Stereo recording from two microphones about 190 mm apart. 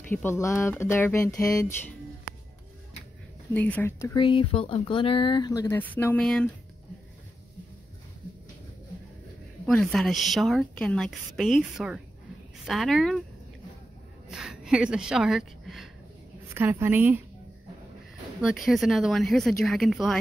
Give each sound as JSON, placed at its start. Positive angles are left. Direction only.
{"t": 0.1, "sound": "speech", "side_deg": 10}
{"t": 3.5, "sound": "speech", "side_deg": 10}
{"t": 4.2, "sound": "speech", "side_deg": 25}
{"t": 9.7, "sound": "a woman's voice", "side_deg": 5}
{"t": 14.3, "sound": "a woman's voice", "side_deg": -5}
{"t": 18.7, "sound": "a woman's voice", "side_deg": 0}